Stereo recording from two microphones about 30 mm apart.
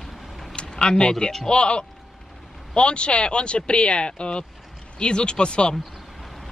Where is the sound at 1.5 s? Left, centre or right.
Left.